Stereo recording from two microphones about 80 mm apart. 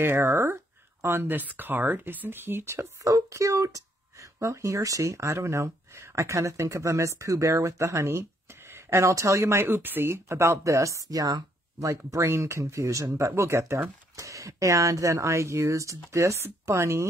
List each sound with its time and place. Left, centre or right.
0.0 s speech: right
12.1 s speech: right